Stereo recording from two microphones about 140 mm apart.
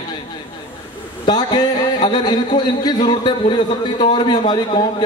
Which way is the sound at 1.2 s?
35° left (ahead or behind).